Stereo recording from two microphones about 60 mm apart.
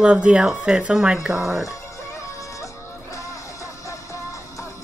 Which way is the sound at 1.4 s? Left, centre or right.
Right.